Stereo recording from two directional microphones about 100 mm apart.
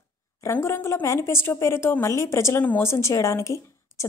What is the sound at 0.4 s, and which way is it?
Speech, 25° left (ahead or behind).